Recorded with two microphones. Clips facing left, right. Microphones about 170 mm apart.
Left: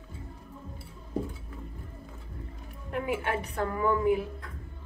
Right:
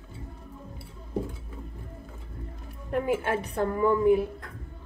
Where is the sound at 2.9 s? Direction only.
40° right (ahead or behind).